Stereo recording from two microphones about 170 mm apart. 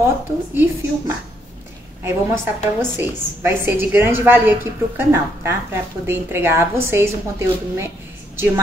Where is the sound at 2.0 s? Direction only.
15° right (ahead or behind).